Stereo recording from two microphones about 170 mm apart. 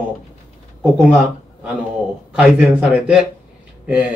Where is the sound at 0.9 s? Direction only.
5° right (ahead or behind).